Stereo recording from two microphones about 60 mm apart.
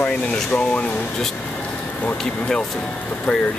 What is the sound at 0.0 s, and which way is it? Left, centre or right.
Speech, left.